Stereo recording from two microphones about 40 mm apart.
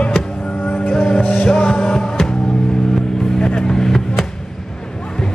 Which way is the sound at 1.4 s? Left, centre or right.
Left.